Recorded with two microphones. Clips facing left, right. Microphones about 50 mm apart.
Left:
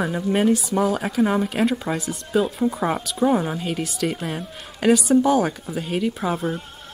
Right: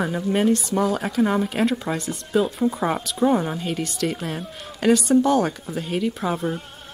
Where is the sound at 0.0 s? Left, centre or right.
Centre.